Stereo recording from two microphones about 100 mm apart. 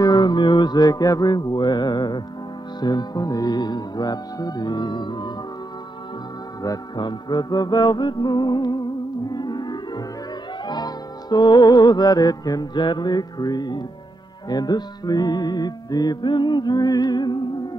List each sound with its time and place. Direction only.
0.0 s music: 45° left (ahead or behind)
6.6 s music: 45° left (ahead or behind)